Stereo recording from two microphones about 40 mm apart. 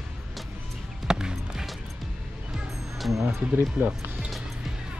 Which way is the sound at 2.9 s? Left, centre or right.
Centre.